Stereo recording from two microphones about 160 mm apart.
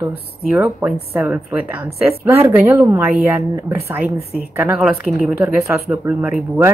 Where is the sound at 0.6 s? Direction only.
5° right (ahead or behind).